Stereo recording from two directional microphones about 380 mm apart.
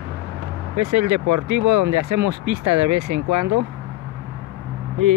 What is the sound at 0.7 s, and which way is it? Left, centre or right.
Speech, right.